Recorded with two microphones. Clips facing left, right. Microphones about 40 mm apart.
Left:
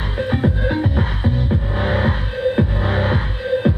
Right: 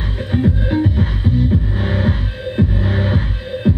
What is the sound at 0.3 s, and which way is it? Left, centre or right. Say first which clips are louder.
Music: right 3 dB; centre.